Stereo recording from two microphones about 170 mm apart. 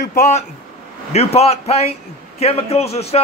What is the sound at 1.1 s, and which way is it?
A man's voice, 40° left (ahead or behind).